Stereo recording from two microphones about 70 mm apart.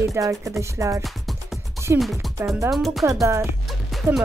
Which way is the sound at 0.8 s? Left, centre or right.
Right.